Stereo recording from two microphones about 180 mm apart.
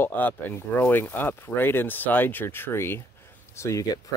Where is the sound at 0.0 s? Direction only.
10° left (ahead or behind).